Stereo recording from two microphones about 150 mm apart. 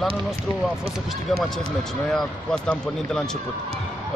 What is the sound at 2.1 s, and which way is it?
A man's voice, 5° left (ahead or behind).